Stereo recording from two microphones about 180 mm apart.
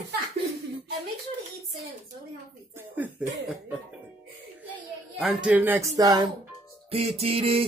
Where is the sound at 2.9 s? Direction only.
10° right (ahead or behind).